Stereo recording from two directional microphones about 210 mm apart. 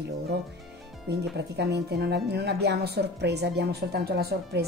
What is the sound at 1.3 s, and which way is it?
Speech, 50° right (ahead or behind).